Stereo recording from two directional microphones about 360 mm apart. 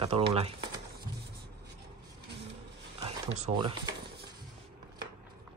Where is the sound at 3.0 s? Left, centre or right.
Centre.